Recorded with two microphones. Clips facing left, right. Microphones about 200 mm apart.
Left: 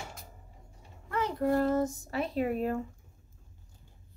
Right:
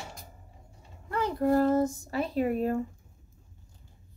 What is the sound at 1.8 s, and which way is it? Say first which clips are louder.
Speech: right 3 dB; centre (ahead or behind).